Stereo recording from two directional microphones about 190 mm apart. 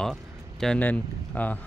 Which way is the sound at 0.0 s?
5° left (ahead or behind).